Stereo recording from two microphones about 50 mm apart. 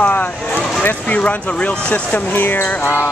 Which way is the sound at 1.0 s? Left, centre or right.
Left.